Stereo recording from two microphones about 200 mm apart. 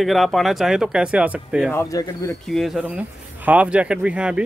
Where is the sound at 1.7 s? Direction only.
15° left (ahead or behind).